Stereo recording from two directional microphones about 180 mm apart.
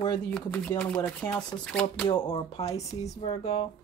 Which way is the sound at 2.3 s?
30° left (ahead or behind).